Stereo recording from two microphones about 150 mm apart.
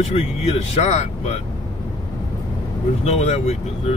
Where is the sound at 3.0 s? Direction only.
45° left (ahead or behind).